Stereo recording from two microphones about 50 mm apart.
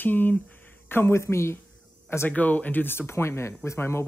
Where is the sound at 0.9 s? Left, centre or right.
Left.